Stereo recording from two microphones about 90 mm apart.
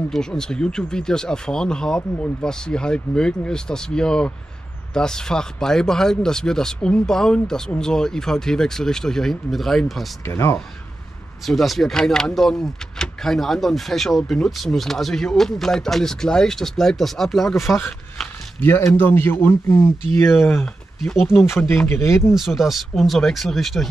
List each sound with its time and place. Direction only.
0.1 s speech: 5° left (ahead or behind)
10.2 s speech: 30° left (ahead or behind)
11.4 s speech: centre (ahead or behind)
18.6 s speech: 25° left (ahead or behind)
20.2 s speech: 5° left (ahead or behind)
21.4 s speech: 30° left (ahead or behind)
22.3 s speech: centre (ahead or behind)